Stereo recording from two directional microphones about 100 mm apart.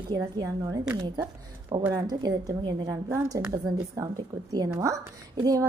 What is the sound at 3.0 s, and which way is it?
Speech, 30° right (ahead or behind).